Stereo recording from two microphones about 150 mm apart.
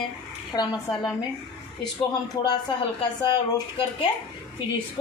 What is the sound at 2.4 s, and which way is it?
Speech, 30° left (ahead or behind).